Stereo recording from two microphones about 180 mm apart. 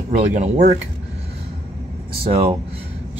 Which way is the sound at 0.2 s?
40° right (ahead or behind).